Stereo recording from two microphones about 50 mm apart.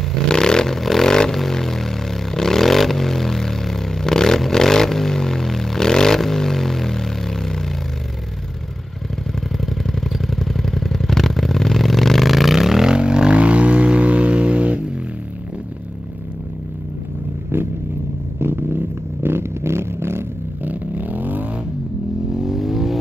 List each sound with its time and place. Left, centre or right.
0.3 s vehicle: centre
10.1 s vehicle: centre
12.9 s vehicle: centre
18.4 s vehicle: right
20.6 s vehicle: right
22.3 s vehicle: centre